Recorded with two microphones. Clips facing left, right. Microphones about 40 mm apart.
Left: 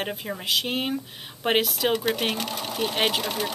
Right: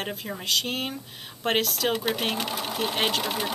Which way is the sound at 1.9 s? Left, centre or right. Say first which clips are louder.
Left 2 dB; centre.